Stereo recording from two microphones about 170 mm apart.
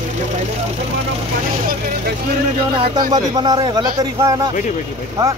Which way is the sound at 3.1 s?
25° right (ahead or behind).